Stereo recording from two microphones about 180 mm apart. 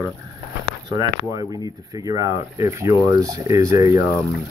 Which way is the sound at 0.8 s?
20° right (ahead or behind).